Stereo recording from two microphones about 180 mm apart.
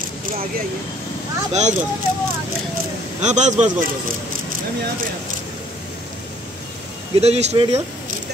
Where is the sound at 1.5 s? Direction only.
40° right (ahead or behind).